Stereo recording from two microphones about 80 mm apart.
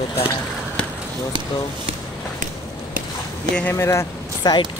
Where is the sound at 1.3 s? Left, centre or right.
Right.